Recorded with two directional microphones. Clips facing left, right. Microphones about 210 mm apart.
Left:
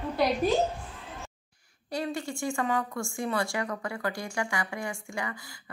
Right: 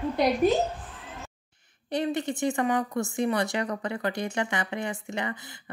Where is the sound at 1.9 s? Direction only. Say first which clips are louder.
Right 5 dB; 20° right (ahead or behind).